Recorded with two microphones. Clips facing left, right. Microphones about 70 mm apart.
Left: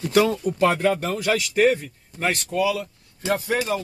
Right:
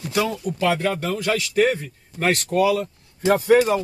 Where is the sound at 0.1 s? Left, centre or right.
Left.